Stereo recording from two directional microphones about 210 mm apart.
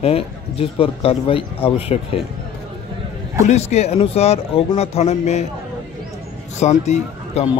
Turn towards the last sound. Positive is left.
turn(degrees=35)  # may be behind; listen again after turning